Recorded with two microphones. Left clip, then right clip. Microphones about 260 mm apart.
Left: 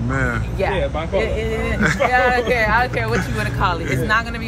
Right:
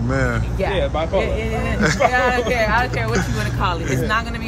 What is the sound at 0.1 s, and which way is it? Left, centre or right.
Speech, centre.